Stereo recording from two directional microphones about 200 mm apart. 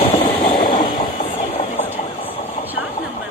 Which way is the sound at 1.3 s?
30° left (ahead or behind).